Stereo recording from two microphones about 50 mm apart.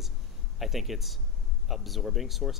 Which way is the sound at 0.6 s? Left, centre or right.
Centre.